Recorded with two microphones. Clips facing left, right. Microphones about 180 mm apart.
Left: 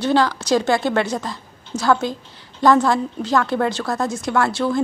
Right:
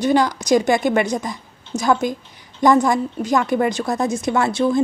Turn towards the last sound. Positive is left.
turn(degrees=-20)  # may be behind; listen again after turning